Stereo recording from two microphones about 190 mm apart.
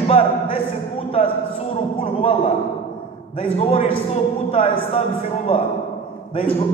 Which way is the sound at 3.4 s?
30° left (ahead or behind).